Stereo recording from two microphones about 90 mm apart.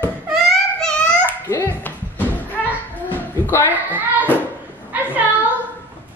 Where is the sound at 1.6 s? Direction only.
20° left (ahead or behind).